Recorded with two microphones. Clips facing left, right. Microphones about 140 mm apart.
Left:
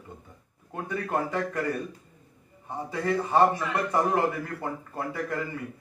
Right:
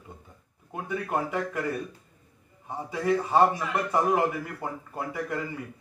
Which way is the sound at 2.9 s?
15° right (ahead or behind).